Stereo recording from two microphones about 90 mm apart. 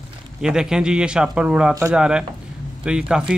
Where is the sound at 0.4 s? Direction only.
5° right (ahead or behind).